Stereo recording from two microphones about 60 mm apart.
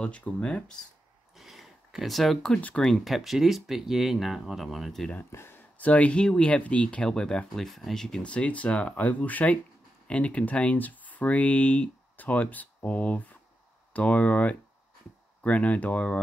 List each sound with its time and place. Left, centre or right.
0.0 s speech: centre
1.3 s a sound: centre
2.7 s speech: centre
5.3 s speech: left
5.8 s speech: left
7.6 s speech: centre
8.2 s speech: centre